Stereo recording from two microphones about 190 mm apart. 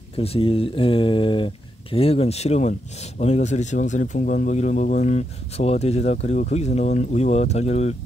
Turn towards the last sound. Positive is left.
turn(degrees=35)  # may be behind; listen again after turning